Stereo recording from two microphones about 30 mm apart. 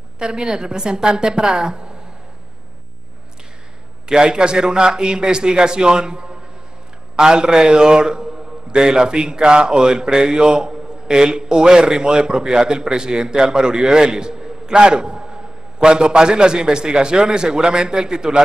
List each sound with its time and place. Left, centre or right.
0.2 s a man's voice: right
4.1 s a man's voice: right